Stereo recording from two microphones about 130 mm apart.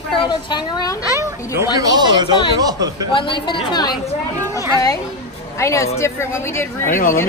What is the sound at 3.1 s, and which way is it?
Speech, 40° left (ahead or behind).